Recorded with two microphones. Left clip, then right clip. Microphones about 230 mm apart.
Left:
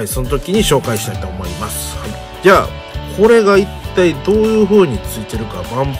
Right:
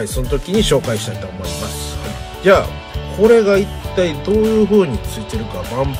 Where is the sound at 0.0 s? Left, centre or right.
Centre.